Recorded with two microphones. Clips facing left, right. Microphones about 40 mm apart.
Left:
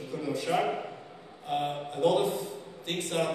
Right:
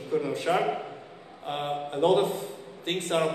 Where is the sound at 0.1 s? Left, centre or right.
Right.